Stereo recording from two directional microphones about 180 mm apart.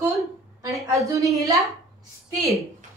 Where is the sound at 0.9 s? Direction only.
15° right (ahead or behind).